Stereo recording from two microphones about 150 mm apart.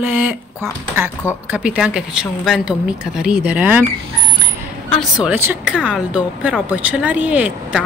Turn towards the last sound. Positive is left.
turn(degrees=-10)  # may be behind; listen again after turning